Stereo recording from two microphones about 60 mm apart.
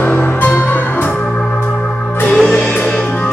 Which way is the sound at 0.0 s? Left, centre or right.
Left.